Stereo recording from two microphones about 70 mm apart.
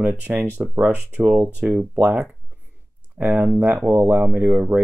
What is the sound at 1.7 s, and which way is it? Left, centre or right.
Speech, right.